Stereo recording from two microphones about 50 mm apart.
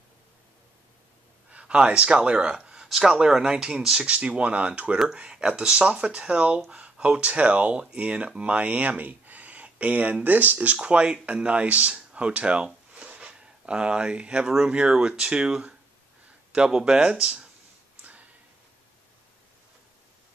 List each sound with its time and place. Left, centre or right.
1.5 s speech: right
4.0 s speech: right